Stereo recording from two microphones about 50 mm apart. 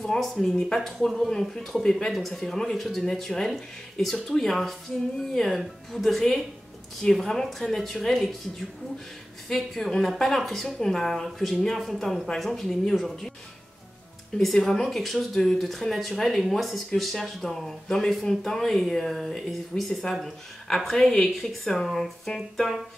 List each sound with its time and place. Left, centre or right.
0.0 s a woman's voice: centre
14.4 s speech: centre